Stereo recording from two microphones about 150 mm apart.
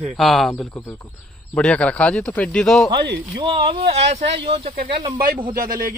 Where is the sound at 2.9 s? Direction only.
30° right (ahead or behind).